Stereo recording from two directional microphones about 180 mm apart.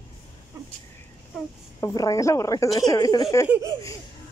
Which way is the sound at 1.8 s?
20° left (ahead or behind).